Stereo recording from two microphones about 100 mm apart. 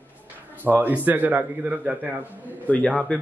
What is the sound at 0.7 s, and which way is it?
Speech, 15° right (ahead or behind).